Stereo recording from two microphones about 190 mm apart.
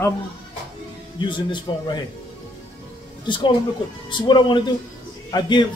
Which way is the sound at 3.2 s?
25° left (ahead or behind).